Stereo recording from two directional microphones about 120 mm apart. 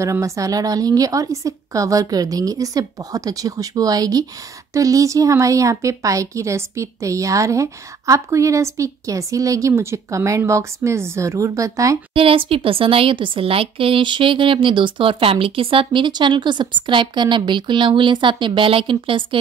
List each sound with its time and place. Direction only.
0.0 s a woman's voice: 25° right (ahead or behind)
12.1 s a woman's voice: 50° right (ahead or behind)